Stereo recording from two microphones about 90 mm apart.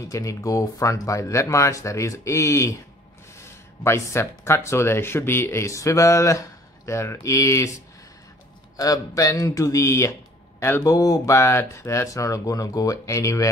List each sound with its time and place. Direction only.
0.1 s speech: 35° left (ahead or behind)